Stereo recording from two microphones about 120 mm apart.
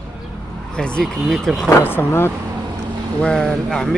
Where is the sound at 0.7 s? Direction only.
5° left (ahead or behind).